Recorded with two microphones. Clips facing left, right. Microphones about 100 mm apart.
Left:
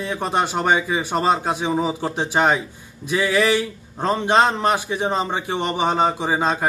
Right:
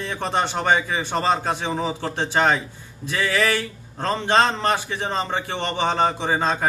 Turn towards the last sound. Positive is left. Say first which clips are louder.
# left 1 dB
turn(degrees=10)  # may be behind; listen again after turning